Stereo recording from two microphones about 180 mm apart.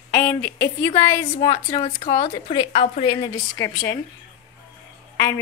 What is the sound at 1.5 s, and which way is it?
A woman's voice, 35° left (ahead or behind).